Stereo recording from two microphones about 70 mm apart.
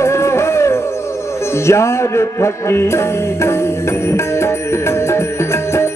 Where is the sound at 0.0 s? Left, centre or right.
Left.